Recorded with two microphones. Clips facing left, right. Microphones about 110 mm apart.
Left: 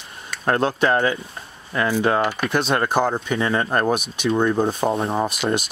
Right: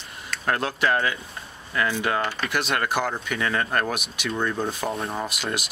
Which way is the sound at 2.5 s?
30° left (ahead or behind).